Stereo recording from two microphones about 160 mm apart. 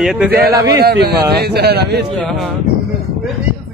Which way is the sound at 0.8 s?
80° right.